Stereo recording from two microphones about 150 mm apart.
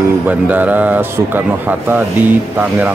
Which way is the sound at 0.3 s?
10° right (ahead or behind).